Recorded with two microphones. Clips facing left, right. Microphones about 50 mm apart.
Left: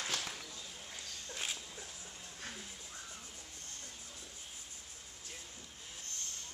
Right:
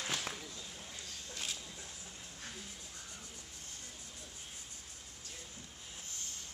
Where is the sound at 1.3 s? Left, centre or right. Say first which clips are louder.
Left 2 dB; centre.